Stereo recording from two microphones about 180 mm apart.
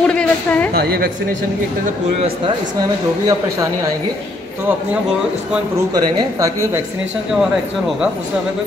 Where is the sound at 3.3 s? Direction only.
15° right (ahead or behind).